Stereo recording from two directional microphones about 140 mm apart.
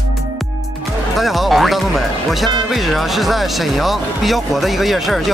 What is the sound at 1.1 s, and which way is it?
Speech, centre (ahead or behind).